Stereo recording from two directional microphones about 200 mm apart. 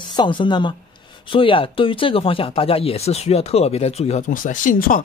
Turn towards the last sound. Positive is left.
turn(degrees=40)  # may be behind; listen again after turning